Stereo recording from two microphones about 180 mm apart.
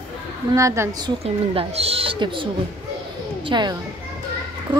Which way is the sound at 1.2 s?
35° right (ahead or behind).